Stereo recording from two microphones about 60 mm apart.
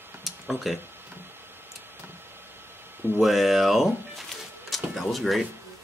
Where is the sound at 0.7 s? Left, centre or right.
Centre.